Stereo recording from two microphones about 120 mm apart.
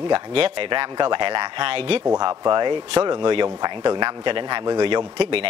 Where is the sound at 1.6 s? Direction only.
50° right (ahead or behind).